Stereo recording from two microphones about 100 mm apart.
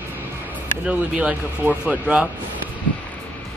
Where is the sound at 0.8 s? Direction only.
10° right (ahead or behind).